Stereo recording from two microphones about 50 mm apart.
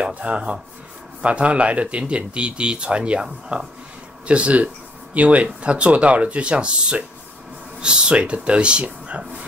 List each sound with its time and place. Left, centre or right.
0.0 s speech: right